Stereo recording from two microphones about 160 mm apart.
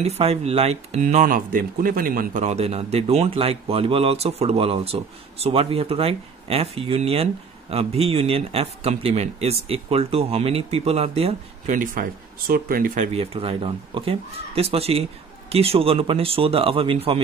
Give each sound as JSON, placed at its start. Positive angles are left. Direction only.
{"t": 0.0, "sound": "speech", "side_deg": -40}
{"t": 2.4, "sound": "speech", "side_deg": -40}
{"t": 11.7, "sound": "speech", "side_deg": -55}
{"t": 13.2, "sound": "speech", "side_deg": -35}